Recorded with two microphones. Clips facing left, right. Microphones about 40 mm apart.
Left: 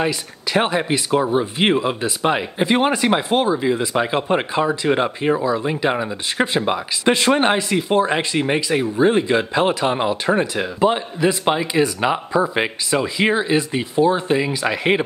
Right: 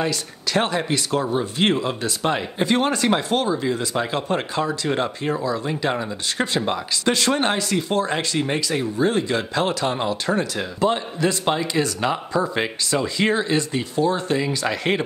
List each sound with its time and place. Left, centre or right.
0.0 s speech: centre